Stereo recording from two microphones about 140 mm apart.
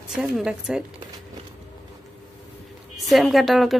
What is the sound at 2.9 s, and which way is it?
Speech, centre (ahead or behind).